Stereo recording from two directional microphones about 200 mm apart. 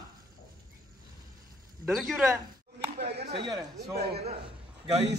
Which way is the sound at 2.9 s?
55° right (ahead or behind).